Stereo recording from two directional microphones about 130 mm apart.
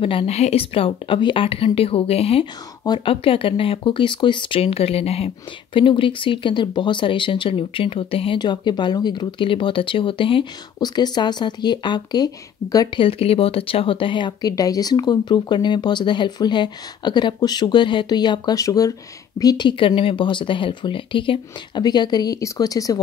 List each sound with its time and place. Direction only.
0.0 s a woman's voice: 45° left (ahead or behind)
13.0 s speech: 45° left (ahead or behind); by 22.9 s 30° left (ahead or behind)